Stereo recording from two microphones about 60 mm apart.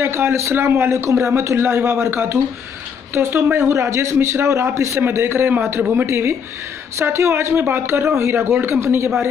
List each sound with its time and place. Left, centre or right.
0.0 s a man's voice: right
5.0 s a man's voice: right